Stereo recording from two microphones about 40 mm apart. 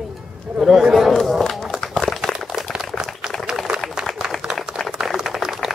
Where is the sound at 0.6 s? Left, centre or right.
Centre.